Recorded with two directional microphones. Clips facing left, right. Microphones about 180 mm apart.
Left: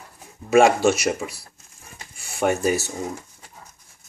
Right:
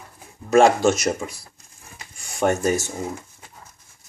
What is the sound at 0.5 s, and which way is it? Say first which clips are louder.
Speech: even; 10° left (ahead or behind).